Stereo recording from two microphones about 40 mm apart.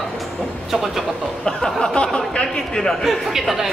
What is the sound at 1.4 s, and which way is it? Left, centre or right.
A man's voice, centre.